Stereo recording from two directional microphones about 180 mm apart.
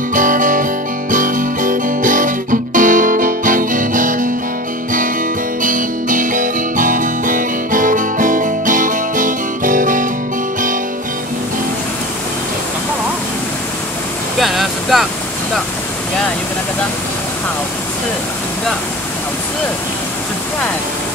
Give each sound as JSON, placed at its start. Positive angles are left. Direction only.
{"t": 0.1, "sound": "guitar", "side_deg": -45}
{"t": 1.1, "sound": "music", "side_deg": -45}
{"t": 5.6, "sound": "music", "side_deg": -45}
{"t": 14.4, "sound": "vehicle", "side_deg": 0}